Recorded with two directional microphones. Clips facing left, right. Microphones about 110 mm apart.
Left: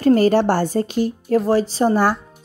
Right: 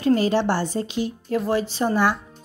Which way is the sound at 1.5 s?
35° left (ahead or behind).